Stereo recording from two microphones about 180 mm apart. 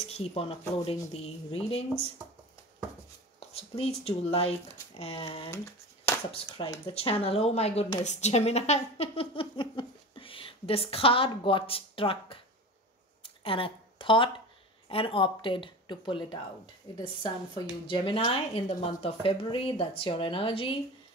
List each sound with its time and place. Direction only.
0.0 s speech: 35° left (ahead or behind)
3.3 s speech: 35° left (ahead or behind)
5.5 s a sound: 15° left (ahead or behind)
6.9 s speech: 30° left (ahead or behind)
13.2 s a sound: 30° left (ahead or behind)
14.9 s a woman's voice: 30° left (ahead or behind)